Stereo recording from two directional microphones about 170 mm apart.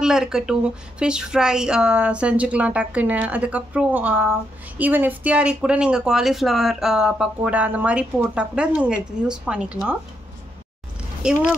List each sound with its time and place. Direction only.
0.0 s speech: 5° right (ahead or behind)
11.2 s speech: 5° right (ahead or behind)